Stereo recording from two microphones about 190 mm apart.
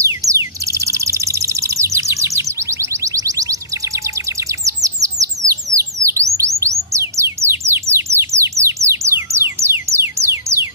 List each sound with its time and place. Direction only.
0.0 s bird: 15° right (ahead or behind)
4.6 s chirp: 15° right (ahead or behind)
5.5 s bird: 15° right (ahead or behind)
6.6 s music: 15° right (ahead or behind)